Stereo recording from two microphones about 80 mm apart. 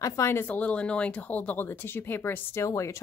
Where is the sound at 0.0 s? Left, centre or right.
Left.